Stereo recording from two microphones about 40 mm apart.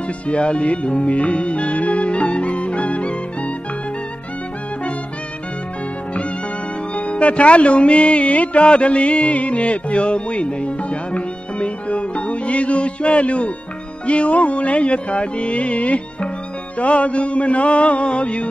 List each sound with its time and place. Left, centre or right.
0.3 s music: left
7.0 s music: left